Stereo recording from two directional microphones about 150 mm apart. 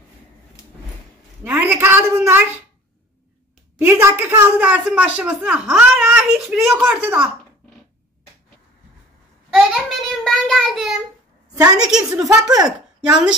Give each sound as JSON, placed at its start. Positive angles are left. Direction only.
{"t": 1.4, "sound": "a woman's voice", "side_deg": -10}
{"t": 3.7, "sound": "a woman's voice", "side_deg": -15}
{"t": 9.5, "sound": "child singing", "side_deg": 0}
{"t": 11.5, "sound": "a woman's voice", "side_deg": -25}
{"t": 12.6, "sound": "speech", "side_deg": -5}